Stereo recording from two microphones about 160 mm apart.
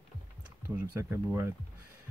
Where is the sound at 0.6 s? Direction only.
15° right (ahead or behind).